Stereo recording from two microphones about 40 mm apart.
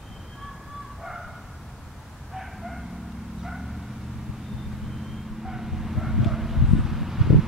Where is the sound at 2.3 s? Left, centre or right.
Centre.